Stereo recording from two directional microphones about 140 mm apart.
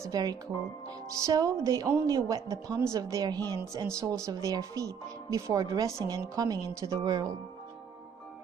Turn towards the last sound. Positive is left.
turn(degrees=-25)  # may be behind; listen again after turning